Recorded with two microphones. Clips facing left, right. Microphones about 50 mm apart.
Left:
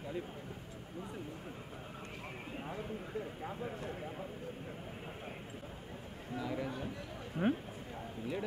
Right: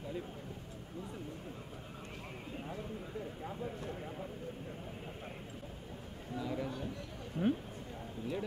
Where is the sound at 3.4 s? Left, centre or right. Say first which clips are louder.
Even; left.